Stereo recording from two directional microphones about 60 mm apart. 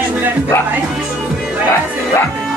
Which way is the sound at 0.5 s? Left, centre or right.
Left.